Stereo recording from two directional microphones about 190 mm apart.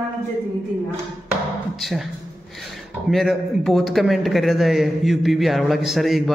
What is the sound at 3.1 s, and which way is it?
A man's voice, centre (ahead or behind).